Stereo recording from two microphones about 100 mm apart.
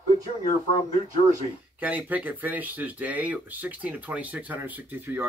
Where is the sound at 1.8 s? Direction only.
15° right (ahead or behind).